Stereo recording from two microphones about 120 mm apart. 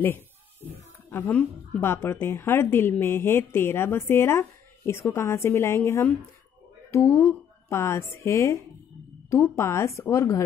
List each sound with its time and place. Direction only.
1.1 s a woman's voice: 10° left (ahead or behind)